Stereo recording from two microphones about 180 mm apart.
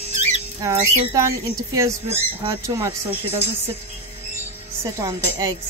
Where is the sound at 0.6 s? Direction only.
15° right (ahead or behind).